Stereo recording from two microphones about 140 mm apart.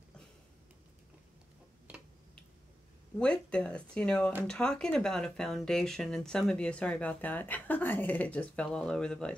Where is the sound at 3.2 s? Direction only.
5° left (ahead or behind).